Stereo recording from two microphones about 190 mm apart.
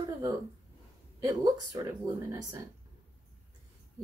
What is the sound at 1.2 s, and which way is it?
Speech, 20° right (ahead or behind).